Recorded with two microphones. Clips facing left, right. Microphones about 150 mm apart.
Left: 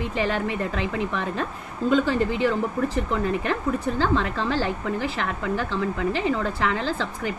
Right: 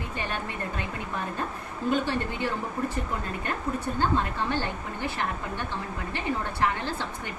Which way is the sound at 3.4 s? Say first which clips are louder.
Left 5 dB; 90° left.